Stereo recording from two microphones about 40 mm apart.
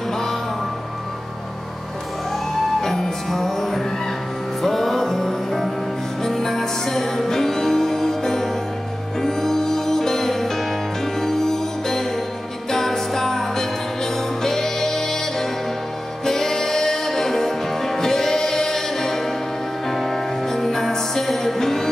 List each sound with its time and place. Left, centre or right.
2.8 s music: centre